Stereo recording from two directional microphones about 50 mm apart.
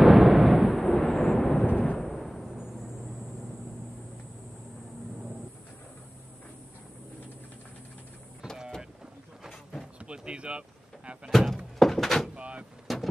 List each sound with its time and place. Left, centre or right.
0.0 s a sound: centre
2.4 s music: centre
9.5 s a sound: centre
9.9 s vehicle: right
11.2 s door: centre
12.4 s vehicle: right
12.8 s vehicle: centre